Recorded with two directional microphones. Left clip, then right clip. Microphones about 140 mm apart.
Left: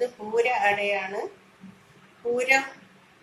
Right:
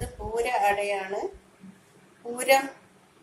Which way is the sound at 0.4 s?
70° right (ahead or behind).